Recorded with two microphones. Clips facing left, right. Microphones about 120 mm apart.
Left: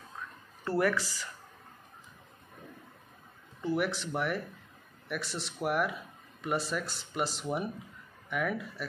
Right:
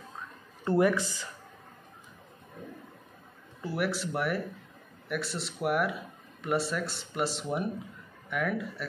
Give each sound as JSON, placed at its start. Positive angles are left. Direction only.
{"t": 0.7, "sound": "speech", "side_deg": -20}
{"t": 3.6, "sound": "speech", "side_deg": -5}